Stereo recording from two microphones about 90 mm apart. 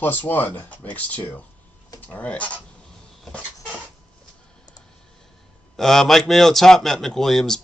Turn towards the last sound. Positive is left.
turn(degrees=5)  # may be behind; listen again after turning